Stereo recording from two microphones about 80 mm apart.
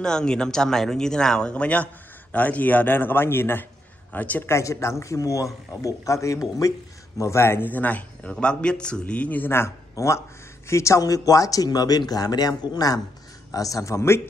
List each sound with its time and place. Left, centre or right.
0.0 s a man's voice: centre
4.5 s a man's voice: left